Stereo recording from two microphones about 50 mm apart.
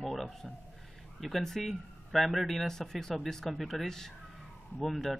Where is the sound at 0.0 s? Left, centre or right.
Centre.